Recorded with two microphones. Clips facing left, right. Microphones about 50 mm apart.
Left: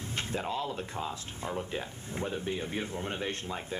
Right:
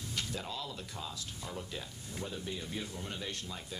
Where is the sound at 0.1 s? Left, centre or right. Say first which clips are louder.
Left 7 dB; left.